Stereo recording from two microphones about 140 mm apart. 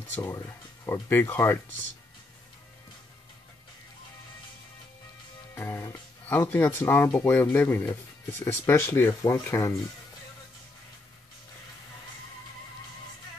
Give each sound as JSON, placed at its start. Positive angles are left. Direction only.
{"t": 0.1, "sound": "speech", "side_deg": 15}
{"t": 5.5, "sound": "speech", "side_deg": 15}